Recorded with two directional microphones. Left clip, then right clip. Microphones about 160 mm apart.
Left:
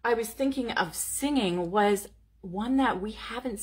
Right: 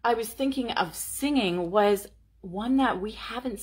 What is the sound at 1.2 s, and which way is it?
A woman's voice, 20° left (ahead or behind).